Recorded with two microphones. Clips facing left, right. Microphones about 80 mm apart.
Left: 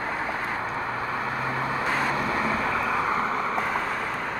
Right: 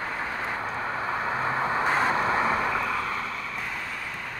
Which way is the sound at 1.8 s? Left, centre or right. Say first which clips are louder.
Right 2 dB; right.